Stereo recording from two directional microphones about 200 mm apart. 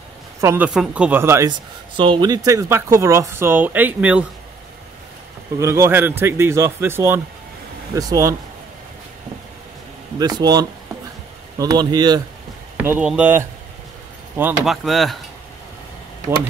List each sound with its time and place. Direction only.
0.4 s speech: 15° right (ahead or behind)
2.0 s speech: 25° right (ahead or behind); by 4.3 s 10° right (ahead or behind)
5.6 s speech: 15° right (ahead or behind)
10.1 s speech: 20° right (ahead or behind)
12.7 s speech: 10° right (ahead or behind)